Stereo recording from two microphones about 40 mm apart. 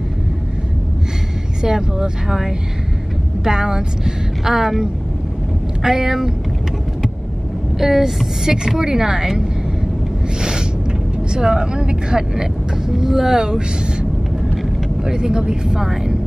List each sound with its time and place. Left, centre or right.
1.6 s speech: centre
7.8 s speech: centre
11.3 s speech: centre
12.9 s speech: centre
15.0 s speech: centre